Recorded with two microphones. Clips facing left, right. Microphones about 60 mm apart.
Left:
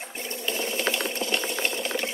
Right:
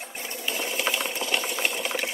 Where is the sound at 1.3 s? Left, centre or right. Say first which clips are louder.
Right 2 dB; right.